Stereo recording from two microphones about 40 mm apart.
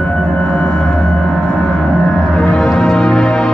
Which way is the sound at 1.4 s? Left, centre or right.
Left.